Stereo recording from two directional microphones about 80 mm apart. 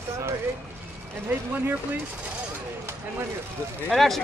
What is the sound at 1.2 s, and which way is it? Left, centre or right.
Speech, right.